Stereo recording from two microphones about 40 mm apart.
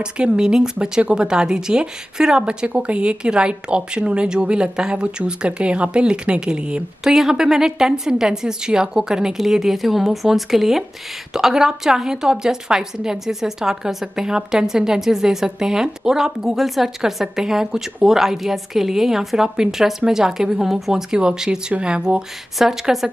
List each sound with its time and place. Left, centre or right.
0.0 s speech: right
7.1 s a woman's voice: centre
22.6 s a woman's voice: centre